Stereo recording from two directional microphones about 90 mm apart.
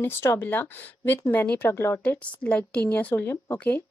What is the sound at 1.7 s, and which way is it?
Speech, 30° left (ahead or behind).